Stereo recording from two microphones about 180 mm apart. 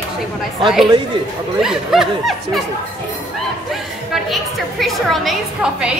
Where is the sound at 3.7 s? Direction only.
Centre (ahead or behind).